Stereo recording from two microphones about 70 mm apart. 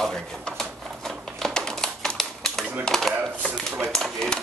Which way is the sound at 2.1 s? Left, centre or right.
Centre.